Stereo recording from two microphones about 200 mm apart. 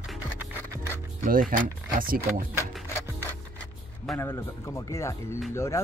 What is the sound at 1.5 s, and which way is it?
Speech, 45° right (ahead or behind).